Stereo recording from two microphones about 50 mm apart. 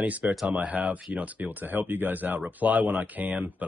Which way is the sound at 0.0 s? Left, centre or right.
Right.